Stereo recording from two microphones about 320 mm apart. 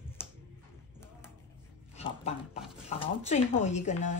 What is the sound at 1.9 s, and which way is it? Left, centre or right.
Speech, centre.